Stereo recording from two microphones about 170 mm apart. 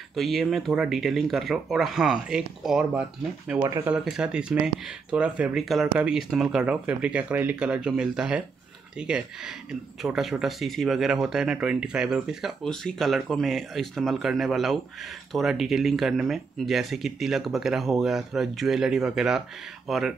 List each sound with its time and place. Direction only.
0.1 s speech: centre (ahead or behind)
3.6 s speech: 20° right (ahead or behind)
3.9 s speech: 5° right (ahead or behind)